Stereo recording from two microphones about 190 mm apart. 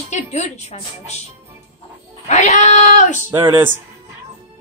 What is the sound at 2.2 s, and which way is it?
Speech, 35° left (ahead or behind).